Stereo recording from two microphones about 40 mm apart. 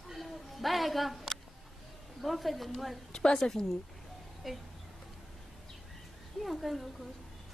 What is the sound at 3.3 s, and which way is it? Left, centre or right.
Speech, centre.